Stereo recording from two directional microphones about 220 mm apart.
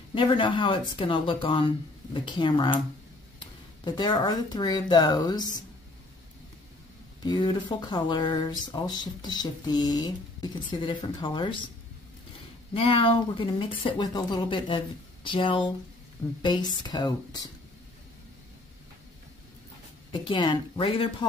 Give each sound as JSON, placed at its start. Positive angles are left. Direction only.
{"t": 0.1, "sound": "speech", "side_deg": 20}
{"t": 3.8, "sound": "speech", "side_deg": 20}
{"t": 7.2, "sound": "speech", "side_deg": 20}
{"t": 12.7, "sound": "speech", "side_deg": 25}
{"t": 20.1, "sound": "speech", "side_deg": 20}